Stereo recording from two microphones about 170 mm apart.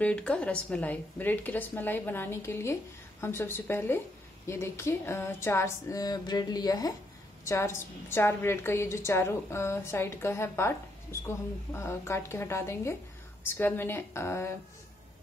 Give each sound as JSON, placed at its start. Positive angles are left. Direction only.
{"t": 0.0, "sound": "a woman's voice", "side_deg": 5}